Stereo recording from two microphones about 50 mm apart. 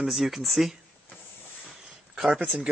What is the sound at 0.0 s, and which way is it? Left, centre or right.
Speech, centre.